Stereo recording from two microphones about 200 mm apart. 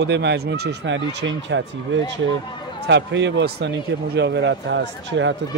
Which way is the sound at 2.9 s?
60° right (ahead or behind).